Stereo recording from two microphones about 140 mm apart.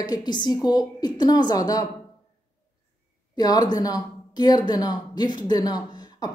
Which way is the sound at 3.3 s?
30° left (ahead or behind).